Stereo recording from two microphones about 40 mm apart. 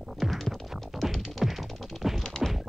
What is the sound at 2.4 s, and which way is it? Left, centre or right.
Music, centre.